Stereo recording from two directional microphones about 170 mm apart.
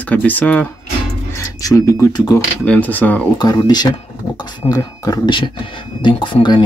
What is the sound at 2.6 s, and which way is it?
Speech, 10° left (ahead or behind).